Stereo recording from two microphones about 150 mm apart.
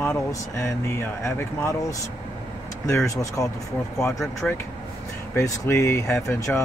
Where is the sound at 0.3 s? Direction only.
20° left (ahead or behind).